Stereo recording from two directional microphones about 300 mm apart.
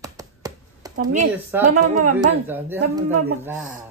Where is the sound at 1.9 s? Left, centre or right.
Right.